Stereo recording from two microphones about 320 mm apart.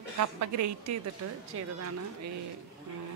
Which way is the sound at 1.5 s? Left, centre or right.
Right.